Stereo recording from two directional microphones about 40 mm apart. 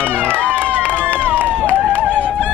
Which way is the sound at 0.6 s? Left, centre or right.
Left.